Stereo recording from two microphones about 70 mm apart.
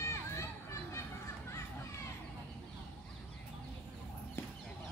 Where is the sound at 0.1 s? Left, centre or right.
Left.